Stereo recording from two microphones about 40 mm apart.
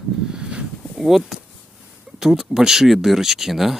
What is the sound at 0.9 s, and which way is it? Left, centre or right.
Speech, centre.